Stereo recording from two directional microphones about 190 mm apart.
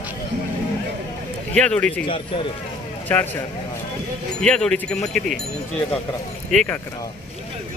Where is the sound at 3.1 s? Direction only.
10° left (ahead or behind).